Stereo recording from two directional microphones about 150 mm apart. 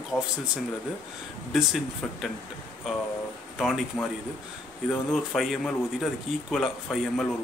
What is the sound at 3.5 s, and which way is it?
Speech, centre (ahead or behind).